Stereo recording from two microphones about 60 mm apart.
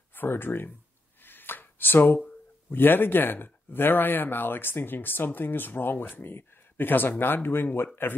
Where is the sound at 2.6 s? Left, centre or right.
Left.